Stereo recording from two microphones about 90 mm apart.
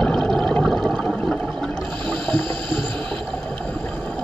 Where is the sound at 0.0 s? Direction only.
10° left (ahead or behind).